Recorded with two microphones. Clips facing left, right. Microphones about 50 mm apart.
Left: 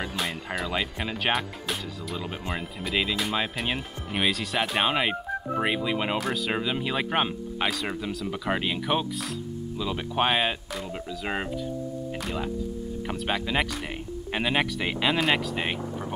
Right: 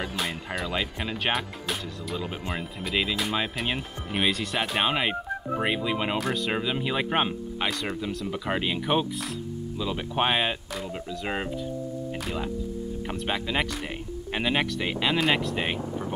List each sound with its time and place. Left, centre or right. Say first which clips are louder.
0.0 s speech: even; centre
13.1 s speech: left 1 dB; centre